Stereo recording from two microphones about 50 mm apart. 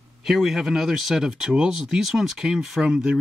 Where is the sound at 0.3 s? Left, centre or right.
Centre.